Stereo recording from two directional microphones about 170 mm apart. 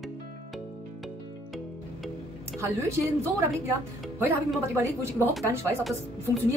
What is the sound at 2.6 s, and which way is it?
Speech, 15° right (ahead or behind).